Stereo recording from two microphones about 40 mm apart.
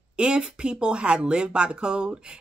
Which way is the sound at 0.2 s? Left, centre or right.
Right.